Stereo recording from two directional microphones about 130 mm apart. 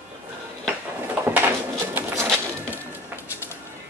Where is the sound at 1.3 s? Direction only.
15° right (ahead or behind).